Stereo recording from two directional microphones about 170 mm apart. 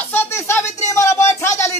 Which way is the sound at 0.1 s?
15° left (ahead or behind).